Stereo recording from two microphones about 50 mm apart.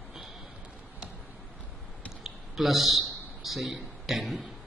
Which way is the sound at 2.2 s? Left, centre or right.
Centre.